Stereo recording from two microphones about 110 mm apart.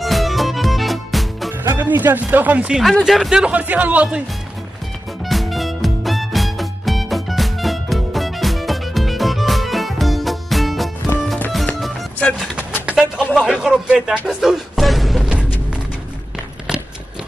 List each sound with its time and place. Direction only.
0.0 s music: centre (ahead or behind)
1.6 s speech: 20° right (ahead or behind)
2.8 s speech: centre (ahead or behind)
5.2 s music: centre (ahead or behind)
12.9 s music: 10° right (ahead or behind)